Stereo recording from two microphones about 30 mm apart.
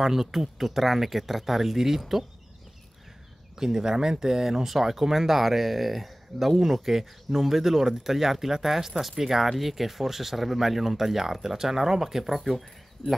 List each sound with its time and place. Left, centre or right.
0.0 s speech: centre
3.5 s speech: centre